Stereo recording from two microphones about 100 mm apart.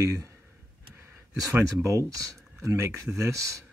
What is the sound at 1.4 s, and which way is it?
Speech, 35° right (ahead or behind).